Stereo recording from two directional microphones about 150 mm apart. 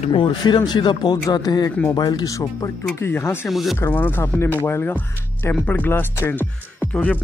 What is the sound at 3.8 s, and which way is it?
Speech, 15° left (ahead or behind).